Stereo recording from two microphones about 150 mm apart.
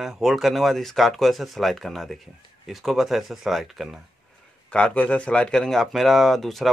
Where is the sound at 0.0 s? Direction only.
Centre (ahead or behind).